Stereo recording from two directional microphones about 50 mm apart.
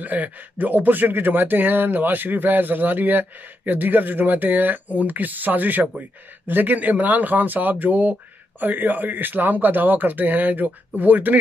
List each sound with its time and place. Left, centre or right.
0.0 s speech: right